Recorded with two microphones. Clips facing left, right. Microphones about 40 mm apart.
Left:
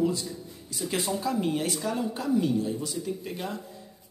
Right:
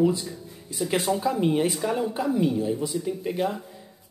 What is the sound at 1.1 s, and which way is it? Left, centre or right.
Speech, right.